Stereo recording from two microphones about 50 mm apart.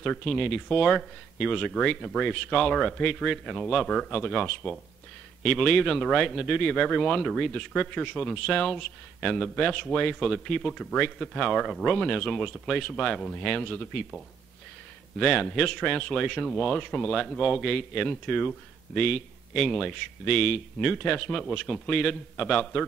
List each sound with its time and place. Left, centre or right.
0.0 s speech: centre
13.4 s speech: left
15.1 s speech: centre
20.9 s speech: centre